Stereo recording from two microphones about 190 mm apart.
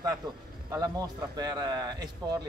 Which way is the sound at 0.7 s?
20° right (ahead or behind).